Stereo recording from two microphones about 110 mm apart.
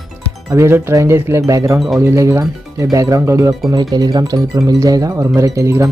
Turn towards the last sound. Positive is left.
turn(degrees=-25)  # may be behind; listen again after turning